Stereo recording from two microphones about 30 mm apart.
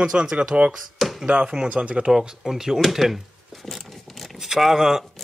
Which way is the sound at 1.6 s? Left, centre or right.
Right.